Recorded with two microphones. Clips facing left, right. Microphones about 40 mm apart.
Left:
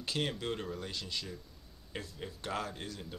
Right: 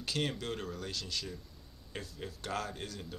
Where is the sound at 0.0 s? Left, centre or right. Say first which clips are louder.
Even; centre.